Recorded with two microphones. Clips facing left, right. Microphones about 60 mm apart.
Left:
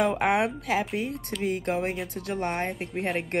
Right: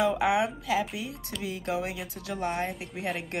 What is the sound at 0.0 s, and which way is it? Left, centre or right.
Speech, left.